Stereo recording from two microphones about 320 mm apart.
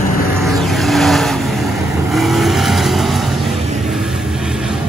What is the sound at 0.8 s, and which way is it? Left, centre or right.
Vehicle, centre.